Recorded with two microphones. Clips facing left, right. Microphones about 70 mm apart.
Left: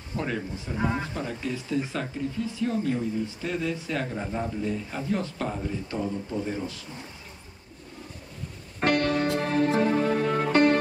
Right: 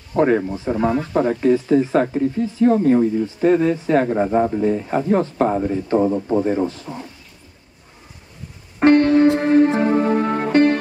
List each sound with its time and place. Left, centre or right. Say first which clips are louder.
0.1 s speech: right 14 dB; right
6.4 s speech: right 12 dB; right
8.7 s music: right 11 dB; right